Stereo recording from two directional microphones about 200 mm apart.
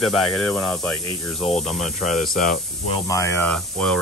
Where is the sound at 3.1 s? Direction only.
15° left (ahead or behind).